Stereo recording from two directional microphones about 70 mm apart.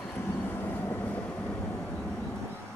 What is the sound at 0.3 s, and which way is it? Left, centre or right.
Vehicle, left.